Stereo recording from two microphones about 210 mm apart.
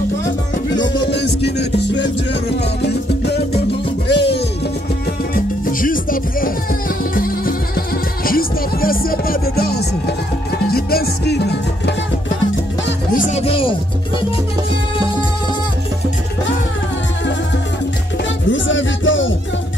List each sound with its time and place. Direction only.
0.7 s music: 20° left (ahead or behind)
1.1 s music: 55° left (ahead or behind)
5.3 s music: 40° left (ahead or behind)
13.1 s music: 30° left (ahead or behind)
18.5 s music: 65° left (ahead or behind)